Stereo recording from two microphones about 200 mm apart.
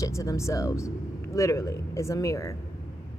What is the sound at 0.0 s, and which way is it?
Speech, 15° left (ahead or behind).